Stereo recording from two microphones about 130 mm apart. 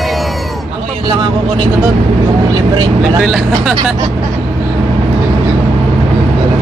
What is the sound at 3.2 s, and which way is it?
Speech, centre (ahead or behind).